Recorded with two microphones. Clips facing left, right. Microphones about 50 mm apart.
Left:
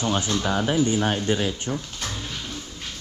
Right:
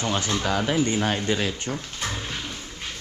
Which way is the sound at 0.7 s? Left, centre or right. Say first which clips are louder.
Left 1 dB; right.